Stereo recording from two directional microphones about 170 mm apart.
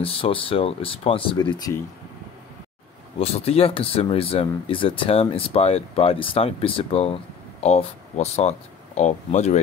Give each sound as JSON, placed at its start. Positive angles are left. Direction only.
{"t": 0.0, "sound": "speech", "side_deg": 35}
{"t": 1.5, "sound": "speech", "side_deg": 20}
{"t": 3.2, "sound": "speech", "side_deg": 35}